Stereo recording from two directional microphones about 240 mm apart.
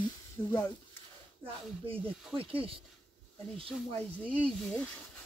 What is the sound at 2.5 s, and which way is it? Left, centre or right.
Speech, right.